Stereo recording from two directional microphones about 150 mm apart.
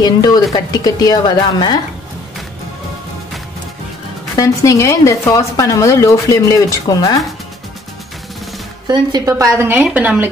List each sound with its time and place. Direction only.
0.0 s speech: 25° left (ahead or behind)
4.4 s speech: 20° left (ahead or behind)
8.8 s a woman's voice: 30° right (ahead or behind); by 10.3 s 10° right (ahead or behind)